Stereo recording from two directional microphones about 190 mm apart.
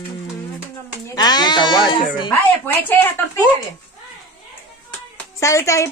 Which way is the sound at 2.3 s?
10° left (ahead or behind).